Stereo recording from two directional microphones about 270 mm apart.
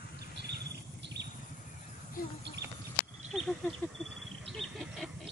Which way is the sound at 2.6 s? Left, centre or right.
Centre.